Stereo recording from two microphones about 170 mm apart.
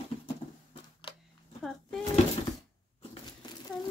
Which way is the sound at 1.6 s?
Centre (ahead or behind).